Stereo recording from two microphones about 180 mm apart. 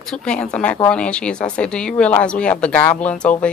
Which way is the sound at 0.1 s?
5° left (ahead or behind).